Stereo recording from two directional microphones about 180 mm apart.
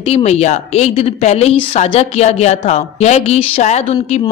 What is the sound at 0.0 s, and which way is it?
A woman's voice, 35° left (ahead or behind).